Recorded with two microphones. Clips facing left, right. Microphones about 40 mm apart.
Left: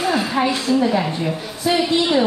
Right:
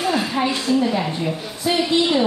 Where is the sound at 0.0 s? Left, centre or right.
Centre.